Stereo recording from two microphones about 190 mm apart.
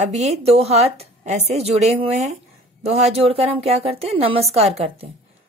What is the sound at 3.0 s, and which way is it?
A woman's voice, 30° right (ahead or behind).